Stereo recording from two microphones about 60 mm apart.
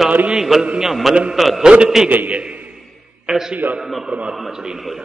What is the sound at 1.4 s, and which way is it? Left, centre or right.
Speech, centre.